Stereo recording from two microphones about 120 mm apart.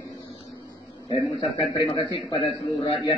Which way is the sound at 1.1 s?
45° left (ahead or behind).